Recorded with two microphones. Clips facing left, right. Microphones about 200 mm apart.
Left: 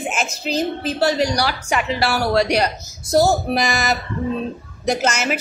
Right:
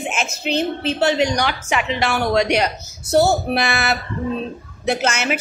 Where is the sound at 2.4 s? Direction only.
35° left (ahead or behind).